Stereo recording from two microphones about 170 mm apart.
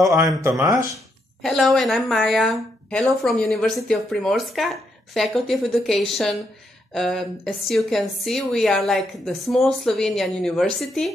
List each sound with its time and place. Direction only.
0.4 s speech: 15° right (ahead or behind)
1.4 s a woman's voice: centre (ahead or behind)